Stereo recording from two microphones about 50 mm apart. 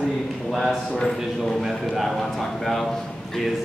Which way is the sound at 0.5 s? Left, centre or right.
Centre.